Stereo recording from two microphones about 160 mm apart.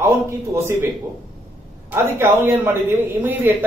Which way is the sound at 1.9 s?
15° right (ahead or behind).